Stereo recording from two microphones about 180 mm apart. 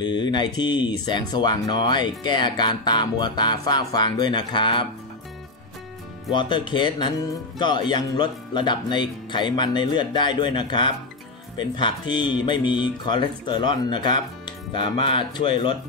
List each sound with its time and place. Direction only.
0.0 s speech: 25° left (ahead or behind)
6.3 s speech: 25° left (ahead or behind)